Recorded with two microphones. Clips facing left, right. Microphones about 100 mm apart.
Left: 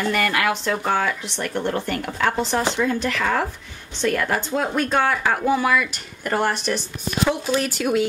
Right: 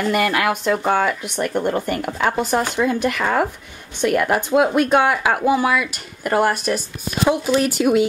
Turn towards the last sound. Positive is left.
turn(degrees=-10)  # may be behind; listen again after turning